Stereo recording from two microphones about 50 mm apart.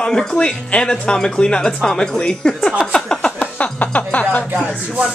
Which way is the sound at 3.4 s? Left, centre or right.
Left.